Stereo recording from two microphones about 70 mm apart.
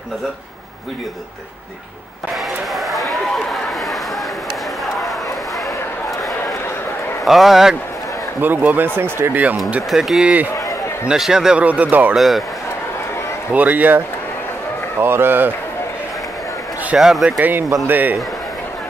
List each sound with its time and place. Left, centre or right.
2.7 s a sound: centre
7.2 s a man's voice: centre
8.4 s speech: right
9.8 s speech: centre
11.6 s speech: right
12.2 s a man's voice: centre
13.5 s a man's voice: right
16.9 s a man's voice: centre
17.4 s speech: right